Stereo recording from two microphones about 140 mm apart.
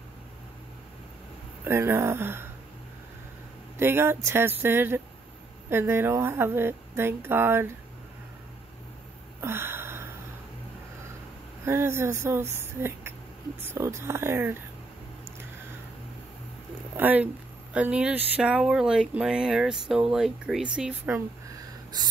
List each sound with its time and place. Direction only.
1.6 s speech: 15° right (ahead or behind)
3.7 s speech: 15° right (ahead or behind)
9.4 s a sound: 15° right (ahead or behind)
11.6 s speech: 20° right (ahead or behind)
16.9 s speech: 15° right (ahead or behind)